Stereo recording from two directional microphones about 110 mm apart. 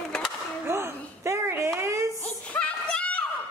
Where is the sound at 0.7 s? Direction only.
25° right (ahead or behind).